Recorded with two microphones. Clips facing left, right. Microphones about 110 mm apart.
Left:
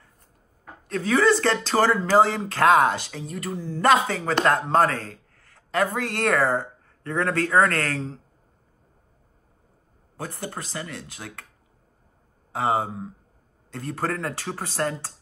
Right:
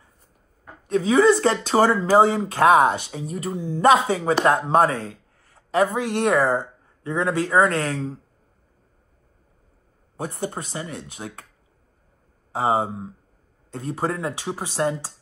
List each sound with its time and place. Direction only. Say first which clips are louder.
0.8 s speech: right 4 dB; 20° right (ahead or behind)
5.5 s a sound: right 4 dB; 25° right (ahead or behind)
5.9 s speech: right 3 dB; 15° right (ahead or behind)
10.4 s speech: right 4 dB; 25° right (ahead or behind)
12.5 s speech: right 2 dB; 25° right (ahead or behind)